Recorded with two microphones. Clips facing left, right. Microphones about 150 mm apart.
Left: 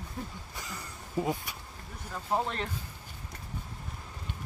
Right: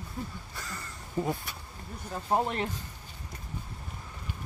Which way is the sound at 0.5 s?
15° left (ahead or behind).